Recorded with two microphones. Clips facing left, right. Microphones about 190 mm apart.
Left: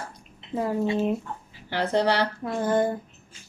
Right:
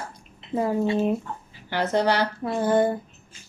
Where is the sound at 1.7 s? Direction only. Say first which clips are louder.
Right 1 dB; 30° left (ahead or behind).